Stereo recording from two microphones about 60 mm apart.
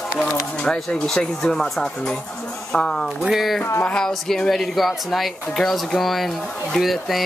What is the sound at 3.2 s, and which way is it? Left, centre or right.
Speech, centre.